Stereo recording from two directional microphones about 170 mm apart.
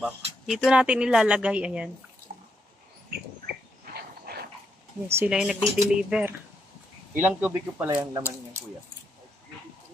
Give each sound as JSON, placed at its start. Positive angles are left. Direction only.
{"t": 0.0, "sound": "speech", "side_deg": 0}
{"t": 3.9, "sound": "mechanisms", "side_deg": -65}
{"t": 5.0, "sound": "speech", "side_deg": -15}
{"t": 5.3, "sound": "speech", "side_deg": -5}
{"t": 7.8, "sound": "speech", "side_deg": -20}